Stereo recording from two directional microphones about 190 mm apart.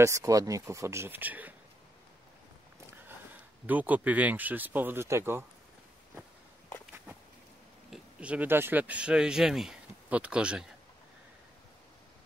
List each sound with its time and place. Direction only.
0.0 s speech: 15° right (ahead or behind)
2.9 s speech: 10° right (ahead or behind)
7.9 s speech: 5° right (ahead or behind)